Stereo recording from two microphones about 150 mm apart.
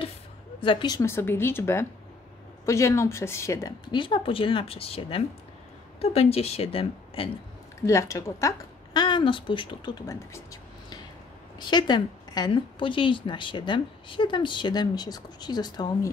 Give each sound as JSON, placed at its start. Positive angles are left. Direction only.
{"t": 0.6, "sound": "a woman's voice", "side_deg": 35}
{"t": 0.9, "sound": "speech", "side_deg": 15}
{"t": 7.8, "sound": "a woman's voice", "side_deg": 20}